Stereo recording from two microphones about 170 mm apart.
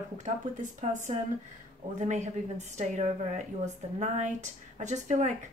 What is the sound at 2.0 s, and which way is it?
Speech, 45° right (ahead or behind).